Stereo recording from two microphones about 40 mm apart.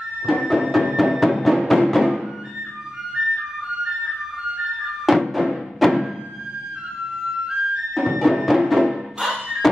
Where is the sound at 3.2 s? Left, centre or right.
Centre.